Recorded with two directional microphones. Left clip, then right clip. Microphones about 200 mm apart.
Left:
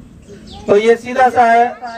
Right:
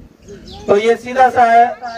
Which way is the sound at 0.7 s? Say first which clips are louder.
Left 2 dB; 40° right (ahead or behind).